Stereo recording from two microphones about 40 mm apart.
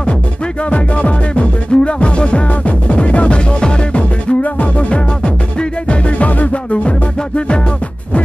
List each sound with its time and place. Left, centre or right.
0.7 s music: left